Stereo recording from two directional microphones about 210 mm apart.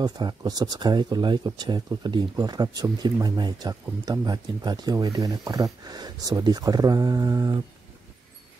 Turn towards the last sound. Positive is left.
turn(degrees=-15)  # may be behind; listen again after turning